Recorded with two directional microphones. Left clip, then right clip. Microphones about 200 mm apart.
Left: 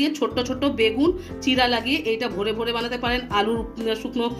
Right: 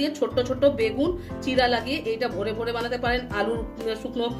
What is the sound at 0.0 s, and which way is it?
Speech, 30° left (ahead or behind).